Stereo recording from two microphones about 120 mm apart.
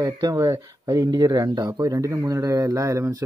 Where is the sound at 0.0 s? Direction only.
30° right (ahead or behind).